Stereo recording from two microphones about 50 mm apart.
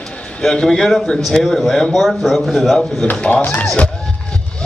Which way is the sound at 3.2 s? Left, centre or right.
Centre.